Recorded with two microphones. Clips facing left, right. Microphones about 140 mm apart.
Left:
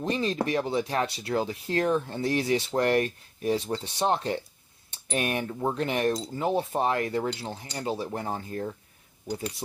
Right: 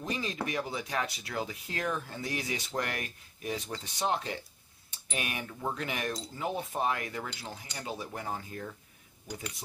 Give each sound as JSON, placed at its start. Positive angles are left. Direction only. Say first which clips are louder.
{"t": 0.0, "sound": "speech", "louder": "left 7 dB", "side_deg": 30}
{"t": 5.5, "sound": "speech", "louder": "left 7 dB", "side_deg": 30}